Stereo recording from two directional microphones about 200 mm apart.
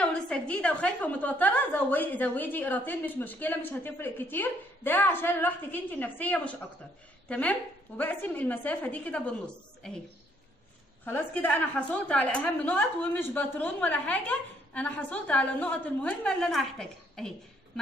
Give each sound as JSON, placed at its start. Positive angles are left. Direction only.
{"t": 0.0, "sound": "a woman's voice", "side_deg": 5}
{"t": 11.1, "sound": "a woman's voice", "side_deg": 10}